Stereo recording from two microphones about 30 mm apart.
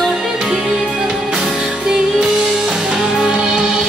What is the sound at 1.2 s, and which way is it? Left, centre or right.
Music, centre.